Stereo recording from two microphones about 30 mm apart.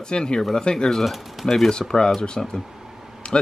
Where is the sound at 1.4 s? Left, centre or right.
Centre.